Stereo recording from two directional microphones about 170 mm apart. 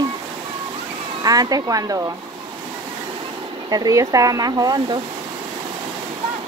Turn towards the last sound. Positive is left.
turn(degrees=-25)  # may be behind; listen again after turning